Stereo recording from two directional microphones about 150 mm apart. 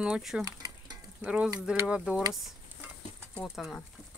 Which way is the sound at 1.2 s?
5° right (ahead or behind).